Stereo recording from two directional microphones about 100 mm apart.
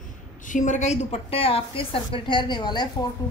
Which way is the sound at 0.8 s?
80° left.